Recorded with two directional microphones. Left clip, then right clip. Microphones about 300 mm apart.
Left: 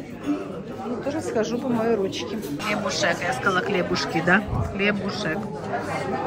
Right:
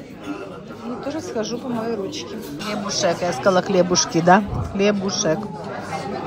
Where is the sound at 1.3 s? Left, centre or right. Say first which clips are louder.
Left 3 dB; centre.